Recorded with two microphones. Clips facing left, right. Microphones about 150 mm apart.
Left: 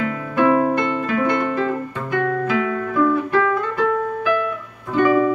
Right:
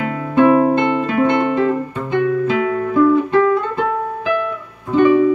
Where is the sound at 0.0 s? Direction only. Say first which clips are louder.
Right 5 dB; 30° right (ahead or behind).